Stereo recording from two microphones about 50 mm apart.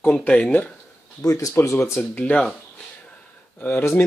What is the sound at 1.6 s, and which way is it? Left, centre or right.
Speech, left.